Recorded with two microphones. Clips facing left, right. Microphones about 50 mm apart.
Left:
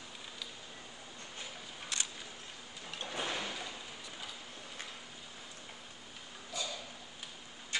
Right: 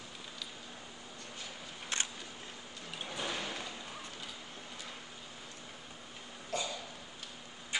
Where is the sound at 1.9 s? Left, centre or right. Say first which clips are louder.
Right 3 dB; right.